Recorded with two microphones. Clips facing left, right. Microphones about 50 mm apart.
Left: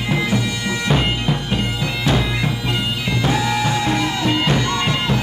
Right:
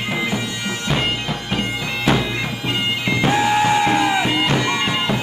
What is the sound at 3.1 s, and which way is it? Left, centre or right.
Music, right.